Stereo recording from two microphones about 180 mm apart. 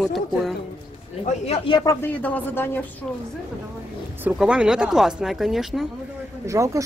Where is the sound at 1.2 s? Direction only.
35° left (ahead or behind); by 2.8 s 10° left (ahead or behind).